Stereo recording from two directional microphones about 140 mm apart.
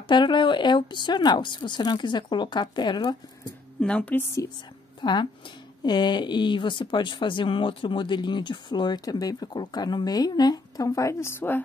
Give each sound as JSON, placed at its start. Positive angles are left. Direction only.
{"t": 0.1, "sound": "speech", "side_deg": 35}
{"t": 3.8, "sound": "speech", "side_deg": 10}
{"t": 5.0, "sound": "speech", "side_deg": 35}